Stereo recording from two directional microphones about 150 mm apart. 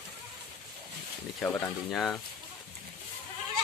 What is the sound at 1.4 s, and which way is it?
Goat, 20° left (ahead or behind).